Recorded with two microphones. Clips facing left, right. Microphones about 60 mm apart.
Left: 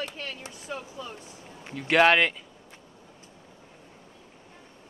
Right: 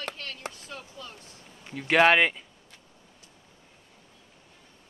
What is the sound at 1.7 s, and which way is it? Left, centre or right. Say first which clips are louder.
Speech: even; centre.